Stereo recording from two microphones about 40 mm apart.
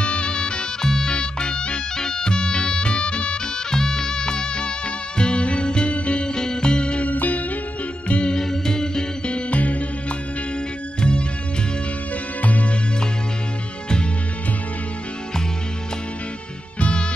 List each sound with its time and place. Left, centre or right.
0.0 s music: left
3.7 s music: centre
6.2 s music: centre
7.1 s music: left
8.1 s music: left
8.4 s music: centre
9.3 s music: left
11.0 s music: left
12.4 s music: left